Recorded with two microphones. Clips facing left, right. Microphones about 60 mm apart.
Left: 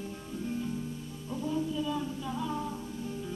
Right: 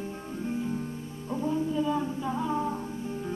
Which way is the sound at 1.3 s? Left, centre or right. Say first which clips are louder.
Right 4 dB; right.